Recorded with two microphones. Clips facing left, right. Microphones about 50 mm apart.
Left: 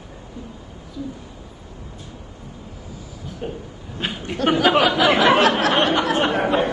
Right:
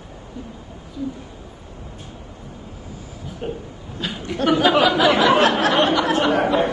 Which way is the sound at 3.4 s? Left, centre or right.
Centre.